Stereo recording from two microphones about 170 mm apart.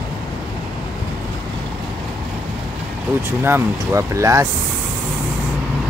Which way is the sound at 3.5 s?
15° right (ahead or behind).